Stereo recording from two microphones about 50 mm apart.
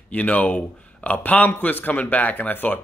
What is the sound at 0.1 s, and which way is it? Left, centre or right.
Speech, left.